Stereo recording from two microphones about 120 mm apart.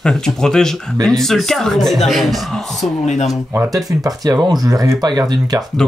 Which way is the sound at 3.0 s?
70° left (ahead or behind).